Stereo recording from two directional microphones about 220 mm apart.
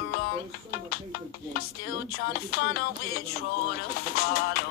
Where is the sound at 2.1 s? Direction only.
45° left (ahead or behind).